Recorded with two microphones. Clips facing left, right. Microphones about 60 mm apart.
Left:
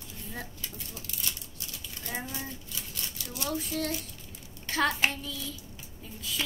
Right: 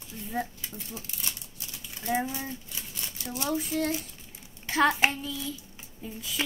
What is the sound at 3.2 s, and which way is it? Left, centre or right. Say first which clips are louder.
Speech: right 4 dB; right.